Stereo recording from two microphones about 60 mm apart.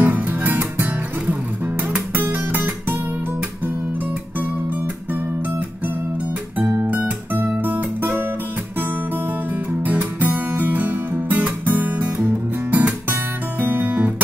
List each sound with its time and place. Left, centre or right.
0.0 s music: right
2.1 s guitar: right
6.6 s music: right
7.0 s guitar: right
9.8 s music: right